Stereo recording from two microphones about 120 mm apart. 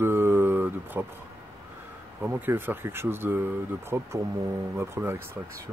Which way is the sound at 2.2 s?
15° right (ahead or behind).